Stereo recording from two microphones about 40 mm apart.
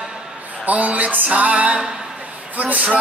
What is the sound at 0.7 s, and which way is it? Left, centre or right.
Music, right.